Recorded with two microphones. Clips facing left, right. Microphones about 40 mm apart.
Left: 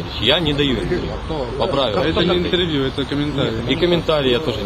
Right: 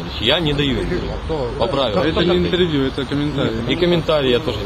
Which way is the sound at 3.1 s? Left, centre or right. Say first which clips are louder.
Even; left.